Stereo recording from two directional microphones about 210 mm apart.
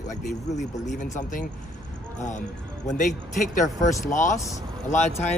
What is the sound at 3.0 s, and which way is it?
Speech, 40° left (ahead or behind).